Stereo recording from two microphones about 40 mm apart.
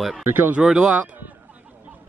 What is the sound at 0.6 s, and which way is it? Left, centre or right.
Speech, centre.